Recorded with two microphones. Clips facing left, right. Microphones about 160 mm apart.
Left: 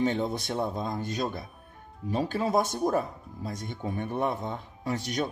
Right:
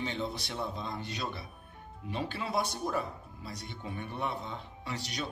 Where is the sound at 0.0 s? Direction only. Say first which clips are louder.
Left 8 dB; 45° left (ahead or behind).